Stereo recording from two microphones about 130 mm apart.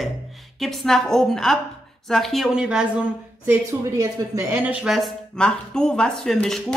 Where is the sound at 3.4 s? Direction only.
20° right (ahead or behind).